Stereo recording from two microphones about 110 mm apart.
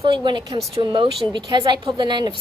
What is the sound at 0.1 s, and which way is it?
A woman's voice, 45° right (ahead or behind).